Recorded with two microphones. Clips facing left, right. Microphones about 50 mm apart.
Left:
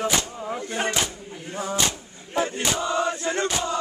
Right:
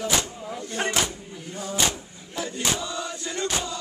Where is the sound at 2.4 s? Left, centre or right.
Left.